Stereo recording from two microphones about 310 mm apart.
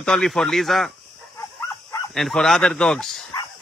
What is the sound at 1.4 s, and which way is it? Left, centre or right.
Dog, centre.